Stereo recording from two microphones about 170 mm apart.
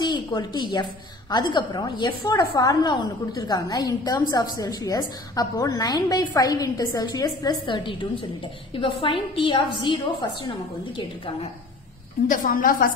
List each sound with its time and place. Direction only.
0.0 s a woman's voice: 25° left (ahead or behind)
12.3 s a woman's voice: 55° left (ahead or behind)